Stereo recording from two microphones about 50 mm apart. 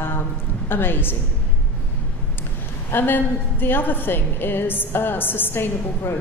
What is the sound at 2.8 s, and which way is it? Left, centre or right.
A woman's voice, left.